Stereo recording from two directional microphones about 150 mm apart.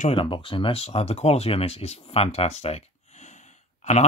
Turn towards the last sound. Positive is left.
turn(degrees=50)  # may be behind; listen again after turning